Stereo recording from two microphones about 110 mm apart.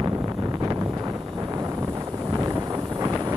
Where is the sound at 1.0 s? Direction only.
30° right (ahead or behind).